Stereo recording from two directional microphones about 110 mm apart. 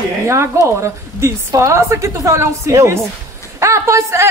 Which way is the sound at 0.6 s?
25° right (ahead or behind).